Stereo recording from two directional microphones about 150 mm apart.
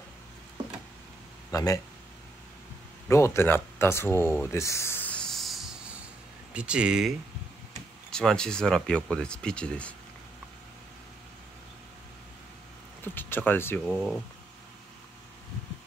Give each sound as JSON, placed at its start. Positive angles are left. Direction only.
{"t": 1.5, "sound": "speech", "side_deg": 25}
{"t": 3.1, "sound": "speech", "side_deg": 20}
{"t": 13.0, "sound": "speech", "side_deg": 15}